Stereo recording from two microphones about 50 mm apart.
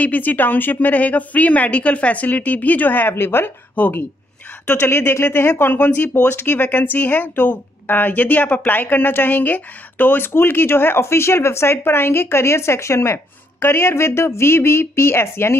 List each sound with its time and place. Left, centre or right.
0.0 s speech: left
3.8 s speech: left
4.7 s speech: left